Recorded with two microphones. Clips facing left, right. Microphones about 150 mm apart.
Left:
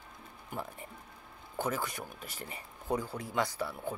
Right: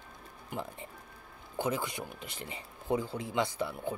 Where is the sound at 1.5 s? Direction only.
20° right (ahead or behind).